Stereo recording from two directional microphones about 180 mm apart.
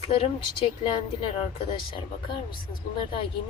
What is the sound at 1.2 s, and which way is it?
Speech, 30° left (ahead or behind).